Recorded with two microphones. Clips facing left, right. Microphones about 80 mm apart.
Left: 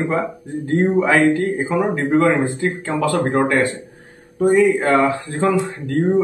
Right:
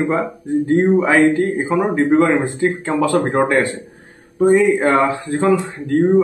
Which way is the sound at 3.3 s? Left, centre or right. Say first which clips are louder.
Right 1 dB; centre.